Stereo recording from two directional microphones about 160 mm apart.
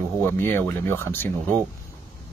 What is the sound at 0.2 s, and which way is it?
Speech, 15° left (ahead or behind).